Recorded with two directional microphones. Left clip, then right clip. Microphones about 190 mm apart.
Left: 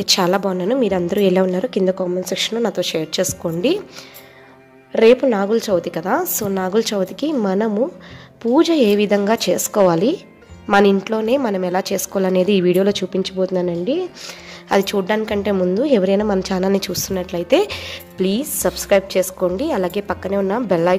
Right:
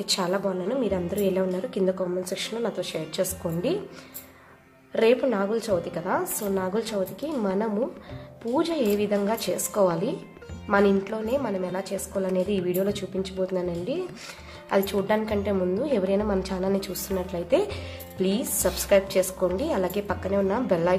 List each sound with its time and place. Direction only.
0.0 s a woman's voice: 45° left (ahead or behind)
4.9 s a woman's voice: 35° left (ahead or behind); by 20.9 s 50° left (ahead or behind)